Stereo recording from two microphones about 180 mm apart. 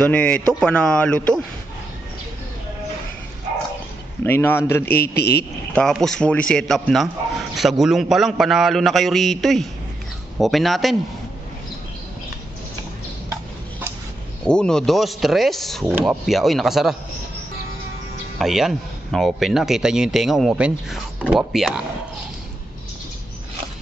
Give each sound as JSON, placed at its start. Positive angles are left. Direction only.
{"t": 0.0, "sound": "a man's voice", "side_deg": 5}
{"t": 4.2, "sound": "a man's voice", "side_deg": 10}
{"t": 4.9, "sound": "a man's voice", "side_deg": 60}
{"t": 5.8, "sound": "speech", "side_deg": 0}
{"t": 14.4, "sound": "speech", "side_deg": 5}
{"t": 15.8, "sound": "speech", "side_deg": -10}
{"t": 18.4, "sound": "speech", "side_deg": 0}